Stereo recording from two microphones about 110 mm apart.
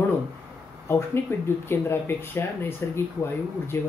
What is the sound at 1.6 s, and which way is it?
Speech, 20° left (ahead or behind).